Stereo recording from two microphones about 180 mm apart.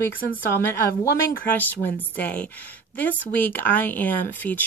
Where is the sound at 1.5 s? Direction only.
10° left (ahead or behind).